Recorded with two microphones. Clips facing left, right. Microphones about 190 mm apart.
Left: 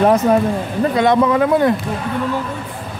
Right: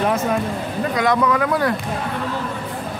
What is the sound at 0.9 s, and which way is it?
Speech, 25° left (ahead or behind).